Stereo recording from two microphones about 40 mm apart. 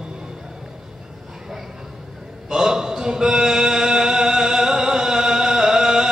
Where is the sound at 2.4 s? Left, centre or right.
Centre.